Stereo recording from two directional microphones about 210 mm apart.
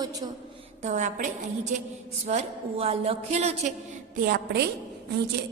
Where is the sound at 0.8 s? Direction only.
35° right (ahead or behind).